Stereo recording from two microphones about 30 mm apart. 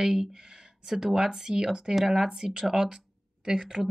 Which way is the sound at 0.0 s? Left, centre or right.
Centre.